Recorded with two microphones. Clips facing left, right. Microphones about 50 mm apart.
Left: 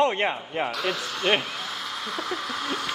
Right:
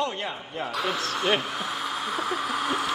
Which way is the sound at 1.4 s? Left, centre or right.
Centre.